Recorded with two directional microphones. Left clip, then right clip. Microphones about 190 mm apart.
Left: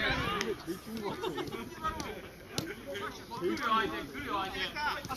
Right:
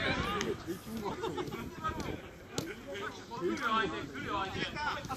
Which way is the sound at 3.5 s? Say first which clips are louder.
Left 2 dB; 15° left (ahead or behind).